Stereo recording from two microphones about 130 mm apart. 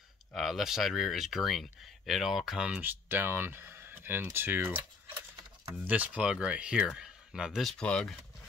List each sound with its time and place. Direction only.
0.3 s speech: centre (ahead or behind)
5.9 s speech: 10° right (ahead or behind); by 8.2 s 5° left (ahead or behind)